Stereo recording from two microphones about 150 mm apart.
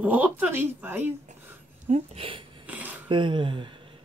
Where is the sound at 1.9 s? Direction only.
40° right (ahead or behind).